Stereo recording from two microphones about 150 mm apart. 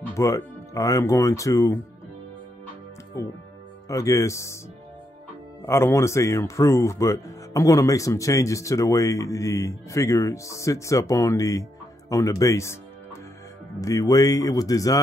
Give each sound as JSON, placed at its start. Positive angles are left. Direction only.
{"t": 0.1, "sound": "speech", "side_deg": 20}
{"t": 3.1, "sound": "speech", "side_deg": 20}
{"t": 5.7, "sound": "speech", "side_deg": 15}